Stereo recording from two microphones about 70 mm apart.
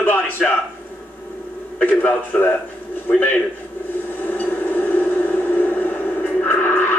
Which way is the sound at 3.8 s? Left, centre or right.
Left.